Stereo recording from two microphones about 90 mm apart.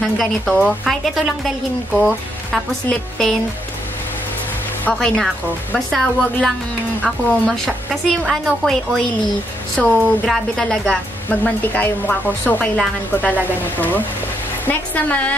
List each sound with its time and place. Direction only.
0.0 s a woman's voice: centre (ahead or behind)
4.9 s a woman's voice: 10° left (ahead or behind)
11.2 s a woman's voice: 20° left (ahead or behind)